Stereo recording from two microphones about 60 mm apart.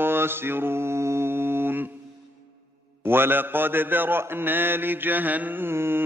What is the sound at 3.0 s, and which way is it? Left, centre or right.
Mantra, right.